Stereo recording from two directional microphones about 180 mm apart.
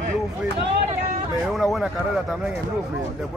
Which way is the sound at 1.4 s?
Centre (ahead or behind).